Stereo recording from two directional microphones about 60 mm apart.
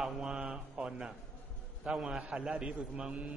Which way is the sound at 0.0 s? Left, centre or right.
Centre.